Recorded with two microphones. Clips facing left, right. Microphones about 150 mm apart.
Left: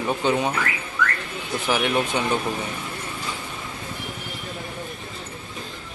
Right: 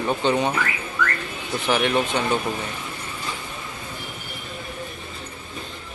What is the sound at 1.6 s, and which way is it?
Speech, 10° left (ahead or behind).